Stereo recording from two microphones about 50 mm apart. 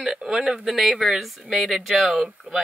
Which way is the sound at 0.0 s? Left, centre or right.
Centre.